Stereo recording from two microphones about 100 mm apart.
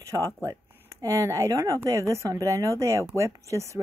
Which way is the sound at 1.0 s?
35° right (ahead or behind).